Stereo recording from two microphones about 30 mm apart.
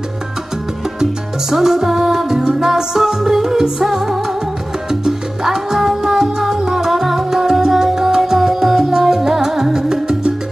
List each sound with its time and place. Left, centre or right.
1.5 s music: centre
5.0 s salsa music: centre
6.6 s music: centre